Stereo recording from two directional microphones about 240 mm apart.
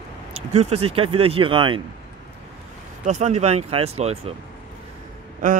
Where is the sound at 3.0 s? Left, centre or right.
Right.